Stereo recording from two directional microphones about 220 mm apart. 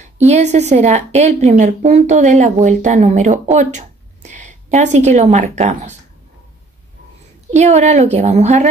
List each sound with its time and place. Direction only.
0.0 s a woman's voice: 30° right (ahead or behind)
7.5 s speech: 30° right (ahead or behind)